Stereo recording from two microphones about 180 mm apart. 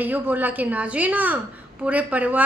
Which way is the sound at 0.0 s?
10° right (ahead or behind).